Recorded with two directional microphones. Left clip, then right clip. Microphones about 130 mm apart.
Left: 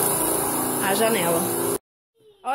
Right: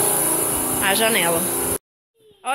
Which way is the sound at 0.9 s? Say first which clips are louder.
Right 3 dB; 5° left (ahead or behind).